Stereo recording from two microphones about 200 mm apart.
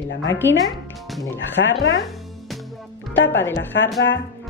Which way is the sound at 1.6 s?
70° left (ahead or behind).